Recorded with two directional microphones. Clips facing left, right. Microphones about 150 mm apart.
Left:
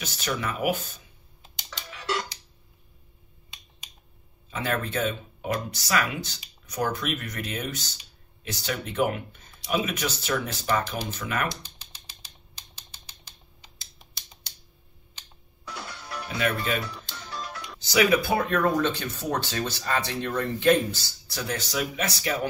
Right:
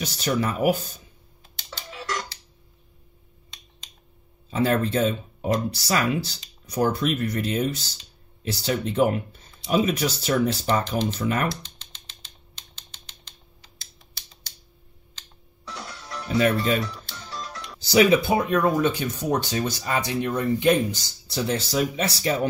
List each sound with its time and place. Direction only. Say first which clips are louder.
0.0 s speech: right 6 dB; 35° right (ahead or behind)
2.0 s tick-tock: left 2 dB; 25° left (ahead or behind)
4.5 s speech: right 7 dB; 30° right (ahead or behind)
11.6 s typewriter: right 1 dB; 10° left (ahead or behind)
15.9 s music: right 10 dB; 30° right (ahead or behind)
16.8 s music: right 3 dB; 10° left (ahead or behind)
17.7 s speech: right 4 dB; 30° right (ahead or behind)